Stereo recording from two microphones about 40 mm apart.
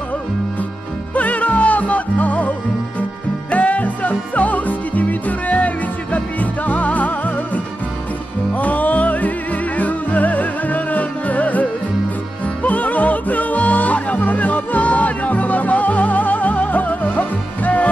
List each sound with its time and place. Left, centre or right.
1.1 s music: left
12.6 s music: left